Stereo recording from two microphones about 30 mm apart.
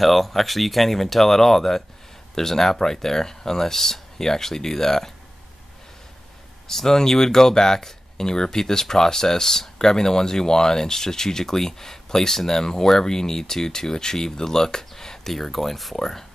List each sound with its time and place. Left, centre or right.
0.0 s speech: centre
6.7 s speech: centre
15.3 s speech: centre